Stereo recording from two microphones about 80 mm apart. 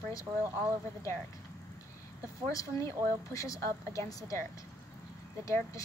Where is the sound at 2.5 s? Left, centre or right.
Left.